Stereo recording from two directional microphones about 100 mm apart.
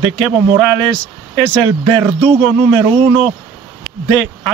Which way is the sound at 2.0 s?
25° right (ahead or behind).